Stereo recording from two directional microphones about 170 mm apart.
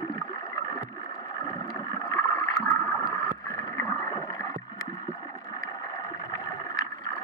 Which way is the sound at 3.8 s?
20° left (ahead or behind).